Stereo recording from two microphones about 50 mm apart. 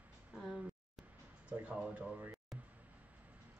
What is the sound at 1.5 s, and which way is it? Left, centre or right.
Speech, right.